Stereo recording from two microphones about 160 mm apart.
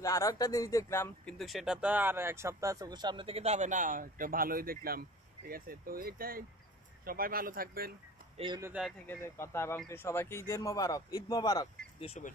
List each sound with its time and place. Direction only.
0.0 s speech: 20° left (ahead or behind)
1.2 s speech: centre (ahead or behind); by 7.9 s 65° right (ahead or behind)
9.0 s speech: 15° left (ahead or behind)